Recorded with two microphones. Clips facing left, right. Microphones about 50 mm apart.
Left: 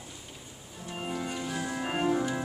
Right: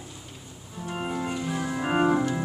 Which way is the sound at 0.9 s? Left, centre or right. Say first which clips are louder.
Right 5 dB; right.